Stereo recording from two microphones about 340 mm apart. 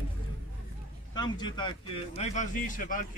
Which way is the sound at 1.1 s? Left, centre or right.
Centre.